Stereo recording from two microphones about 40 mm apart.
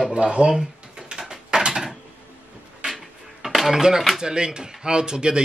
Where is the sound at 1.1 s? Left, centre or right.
Centre.